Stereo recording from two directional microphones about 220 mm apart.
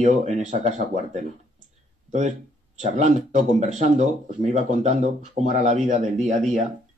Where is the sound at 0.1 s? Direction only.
30° right (ahead or behind).